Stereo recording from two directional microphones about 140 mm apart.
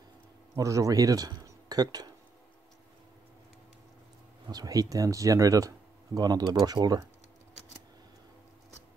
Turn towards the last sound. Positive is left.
turn(degrees=-30)  # may be behind; listen again after turning